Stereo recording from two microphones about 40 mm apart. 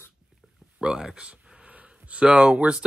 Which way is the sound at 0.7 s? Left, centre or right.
Centre.